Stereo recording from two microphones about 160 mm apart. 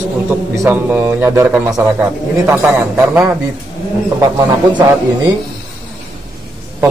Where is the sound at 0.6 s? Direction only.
15° right (ahead or behind).